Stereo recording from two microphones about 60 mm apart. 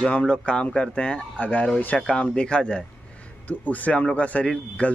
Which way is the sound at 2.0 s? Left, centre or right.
Centre.